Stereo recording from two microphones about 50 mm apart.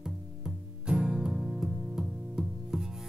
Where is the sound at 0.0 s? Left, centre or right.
Centre.